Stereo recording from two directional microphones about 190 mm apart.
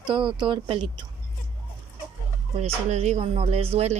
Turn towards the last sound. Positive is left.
turn(degrees=-35)  # may be behind; listen again after turning